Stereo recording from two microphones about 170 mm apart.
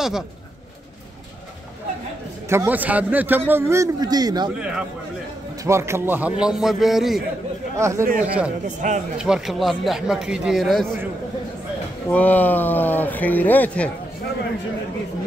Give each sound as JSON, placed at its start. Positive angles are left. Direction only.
{"t": 2.5, "sound": "a man's voice", "side_deg": -10}
{"t": 4.6, "sound": "speech", "side_deg": -5}
{"t": 7.7, "sound": "a man's voice", "side_deg": -15}
{"t": 8.0, "sound": "speech", "side_deg": -55}
{"t": 9.2, "sound": "speech", "side_deg": 0}
{"t": 12.1, "sound": "speech", "side_deg": 10}